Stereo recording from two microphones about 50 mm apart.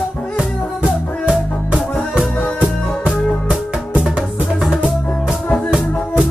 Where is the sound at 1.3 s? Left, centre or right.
Centre.